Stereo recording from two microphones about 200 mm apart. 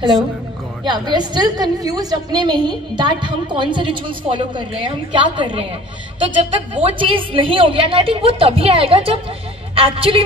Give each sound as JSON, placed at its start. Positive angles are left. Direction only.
{"t": 0.8, "sound": "a woman's voice", "side_deg": -20}